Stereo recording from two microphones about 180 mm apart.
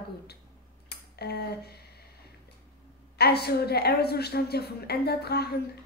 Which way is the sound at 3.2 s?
60° left (ahead or behind).